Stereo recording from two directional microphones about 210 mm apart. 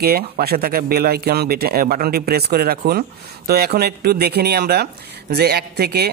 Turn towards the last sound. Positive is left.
turn(degrees=-50)  # may be behind; listen again after turning